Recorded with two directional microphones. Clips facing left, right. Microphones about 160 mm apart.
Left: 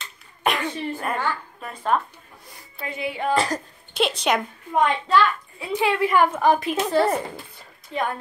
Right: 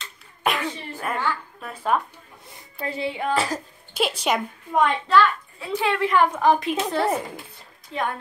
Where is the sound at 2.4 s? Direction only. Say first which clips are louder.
Right 4 dB; 30° right (ahead or behind).